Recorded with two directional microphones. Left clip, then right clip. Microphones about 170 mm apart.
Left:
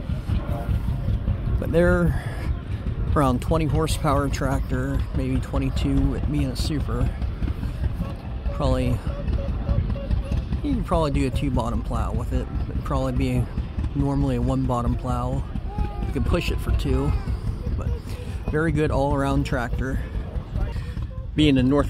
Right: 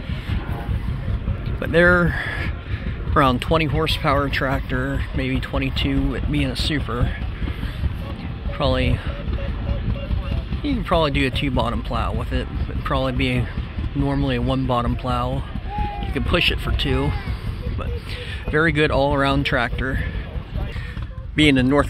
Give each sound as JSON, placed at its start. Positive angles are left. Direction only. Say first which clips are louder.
{"t": 1.6, "sound": "speech", "louder": "right 5 dB", "side_deg": 10}
{"t": 3.8, "sound": "speech", "louder": "right 4 dB", "side_deg": 20}
{"t": 4.7, "sound": "speech", "louder": "right 4 dB", "side_deg": -10}
{"t": 5.1, "sound": "speech", "louder": "right 3 dB", "side_deg": 5}
{"t": 8.5, "sound": "speech", "louder": "right 4 dB", "side_deg": 10}
{"t": 10.6, "sound": "speech", "louder": "right 4 dB", "side_deg": 10}
{"t": 14.5, "sound": "speech", "louder": "right 4 dB", "side_deg": 5}
{"t": 18.5, "sound": "speech", "louder": "right 5 dB", "side_deg": 5}
{"t": 21.4, "sound": "speech", "louder": "right 3 dB", "side_deg": 0}